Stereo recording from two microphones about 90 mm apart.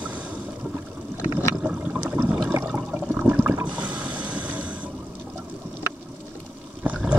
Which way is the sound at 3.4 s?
20° right (ahead or behind).